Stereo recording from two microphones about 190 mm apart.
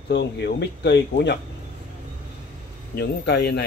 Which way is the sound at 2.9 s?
60° left (ahead or behind).